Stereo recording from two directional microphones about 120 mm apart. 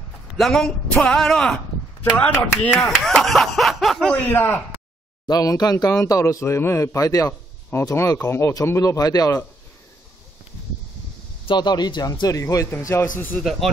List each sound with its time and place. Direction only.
0.4 s a man's voice: 5° left (ahead or behind)
5.3 s speech: 30° left (ahead or behind)
11.4 s a man's voice: 40° left (ahead or behind)
13.4 s a man's voice: centre (ahead or behind)